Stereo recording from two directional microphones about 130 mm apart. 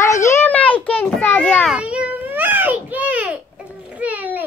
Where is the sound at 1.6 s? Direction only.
10° right (ahead or behind).